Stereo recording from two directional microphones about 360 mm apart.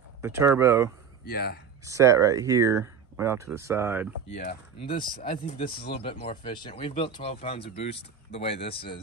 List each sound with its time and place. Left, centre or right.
0.2 s speech: centre
1.2 s speech: left
1.9 s speech: centre
4.3 s speech: centre
6.0 s speech: centre